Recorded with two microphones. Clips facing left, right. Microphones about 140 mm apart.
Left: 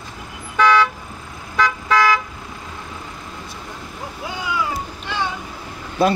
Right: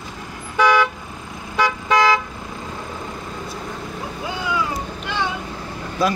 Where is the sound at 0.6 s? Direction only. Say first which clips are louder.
Left 1 dB; 15° right (ahead or behind).